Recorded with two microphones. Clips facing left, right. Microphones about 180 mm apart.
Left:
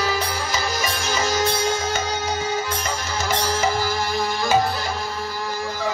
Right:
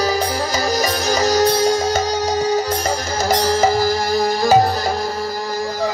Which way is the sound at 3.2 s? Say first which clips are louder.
Right 7 dB; 40° right (ahead or behind).